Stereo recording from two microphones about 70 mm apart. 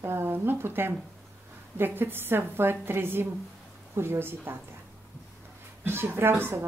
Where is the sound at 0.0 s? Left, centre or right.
Right.